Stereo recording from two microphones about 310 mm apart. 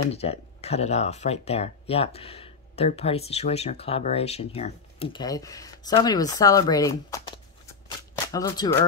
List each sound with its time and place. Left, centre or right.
0.1 s speech: centre
8.3 s speech: centre